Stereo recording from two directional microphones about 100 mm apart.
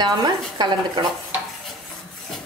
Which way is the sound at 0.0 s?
45° right (ahead or behind).